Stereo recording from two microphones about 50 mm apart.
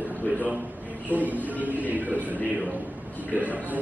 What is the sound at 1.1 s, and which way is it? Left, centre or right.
Speech, left.